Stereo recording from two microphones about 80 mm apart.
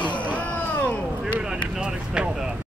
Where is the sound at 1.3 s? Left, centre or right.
Centre.